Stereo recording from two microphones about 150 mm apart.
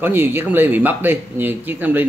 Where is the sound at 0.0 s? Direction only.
15° right (ahead or behind).